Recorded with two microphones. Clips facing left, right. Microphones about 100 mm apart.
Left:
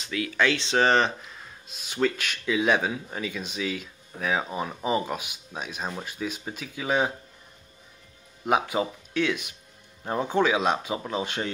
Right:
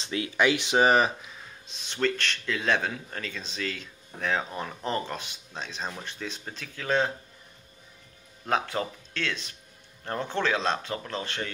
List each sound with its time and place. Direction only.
0.0 s speech: 30° right (ahead or behind)
0.4 s speech: 15° right (ahead or behind); by 7.1 s 10° left (ahead or behind)
8.5 s speech: 10° left (ahead or behind)